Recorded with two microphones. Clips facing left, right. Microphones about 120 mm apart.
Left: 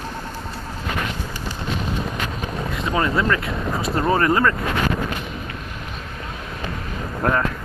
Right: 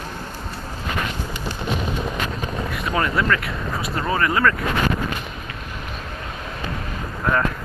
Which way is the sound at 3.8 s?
35° left (ahead or behind).